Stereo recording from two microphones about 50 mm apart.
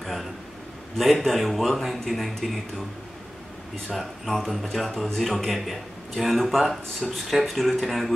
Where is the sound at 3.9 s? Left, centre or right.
Centre.